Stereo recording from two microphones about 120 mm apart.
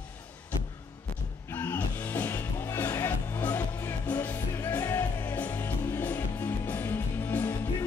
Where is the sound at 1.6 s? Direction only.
15° left (ahead or behind).